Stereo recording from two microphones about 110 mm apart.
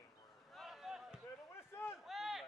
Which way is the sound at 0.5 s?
Centre (ahead or behind).